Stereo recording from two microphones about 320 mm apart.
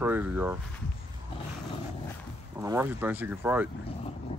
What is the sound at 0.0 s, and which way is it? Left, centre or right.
Speech, centre.